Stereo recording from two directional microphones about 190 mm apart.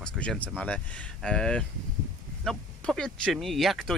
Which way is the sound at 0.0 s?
5° left (ahead or behind).